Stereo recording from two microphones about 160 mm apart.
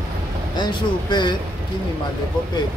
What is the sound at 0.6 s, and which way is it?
Speech, 30° left (ahead or behind).